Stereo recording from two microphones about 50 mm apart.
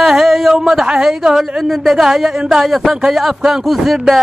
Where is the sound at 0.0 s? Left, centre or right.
Centre.